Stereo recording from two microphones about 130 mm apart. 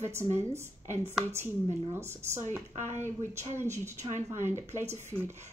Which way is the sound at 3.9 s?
60° right (ahead or behind).